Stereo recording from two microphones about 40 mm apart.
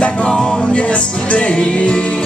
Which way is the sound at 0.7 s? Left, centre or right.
Left.